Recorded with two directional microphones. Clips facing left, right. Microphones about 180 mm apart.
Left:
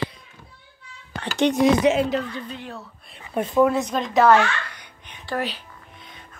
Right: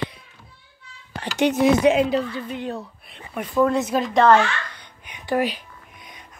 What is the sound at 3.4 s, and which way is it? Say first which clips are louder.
Speech: left 2 dB; 25° left (ahead or behind).